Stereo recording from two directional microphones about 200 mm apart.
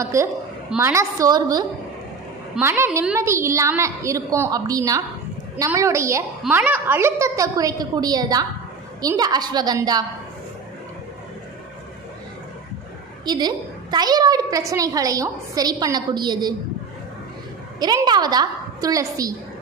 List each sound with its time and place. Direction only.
0.0 s a woman's voice: 15° right (ahead or behind)
13.2 s a woman's voice: 20° right (ahead or behind)
17.7 s a woman's voice: 20° right (ahead or behind)